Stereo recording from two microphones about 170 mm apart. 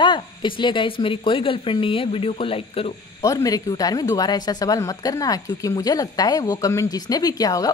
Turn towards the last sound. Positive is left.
turn(degrees=20)  # may be behind; listen again after turning